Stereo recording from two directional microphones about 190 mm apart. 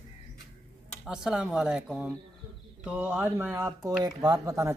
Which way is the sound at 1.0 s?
5° right (ahead or behind).